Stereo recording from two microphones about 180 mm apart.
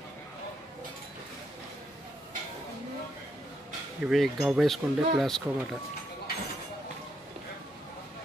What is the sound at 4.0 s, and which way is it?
Speech, centre (ahead or behind).